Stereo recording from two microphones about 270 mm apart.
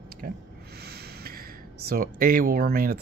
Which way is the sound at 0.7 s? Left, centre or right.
Right.